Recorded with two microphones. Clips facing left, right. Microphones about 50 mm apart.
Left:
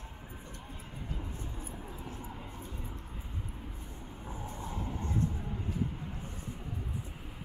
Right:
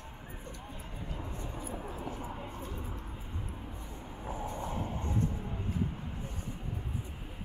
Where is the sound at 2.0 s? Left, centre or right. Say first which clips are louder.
Right 4 dB; right.